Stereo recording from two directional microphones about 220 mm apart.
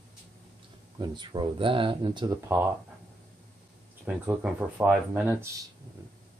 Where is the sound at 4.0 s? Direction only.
10° right (ahead or behind).